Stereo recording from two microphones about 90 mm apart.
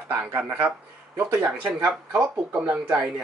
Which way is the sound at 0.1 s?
25° right (ahead or behind).